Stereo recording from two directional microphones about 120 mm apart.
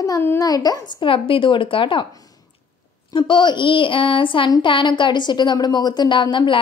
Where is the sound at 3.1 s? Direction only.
40° left (ahead or behind).